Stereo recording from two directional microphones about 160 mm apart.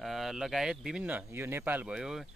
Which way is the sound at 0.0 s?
Centre (ahead or behind).